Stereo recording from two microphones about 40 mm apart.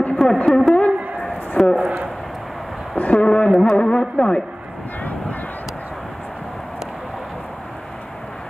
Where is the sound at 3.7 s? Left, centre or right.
Left.